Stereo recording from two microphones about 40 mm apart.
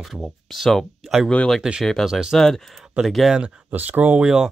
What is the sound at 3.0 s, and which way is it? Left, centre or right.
Speech, centre.